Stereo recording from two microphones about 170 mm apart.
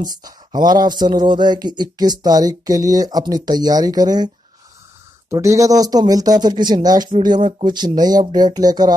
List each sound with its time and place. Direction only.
0.0 s speech: 25° right (ahead or behind)
5.3 s speech: 15° right (ahead or behind)